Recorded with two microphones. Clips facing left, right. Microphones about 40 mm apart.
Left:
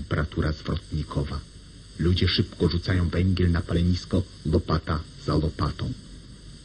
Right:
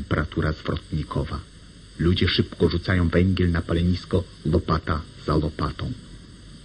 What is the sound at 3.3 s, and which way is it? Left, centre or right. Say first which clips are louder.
Speech: right 2 dB; right.